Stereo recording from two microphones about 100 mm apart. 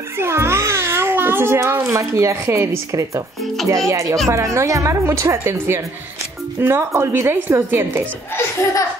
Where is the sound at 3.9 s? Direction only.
30° right (ahead or behind).